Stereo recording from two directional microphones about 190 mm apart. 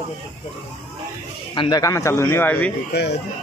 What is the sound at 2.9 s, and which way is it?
Speech, 60° left (ahead or behind).